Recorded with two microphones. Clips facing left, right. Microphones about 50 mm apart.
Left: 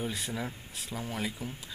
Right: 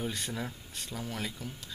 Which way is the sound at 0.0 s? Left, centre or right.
Centre.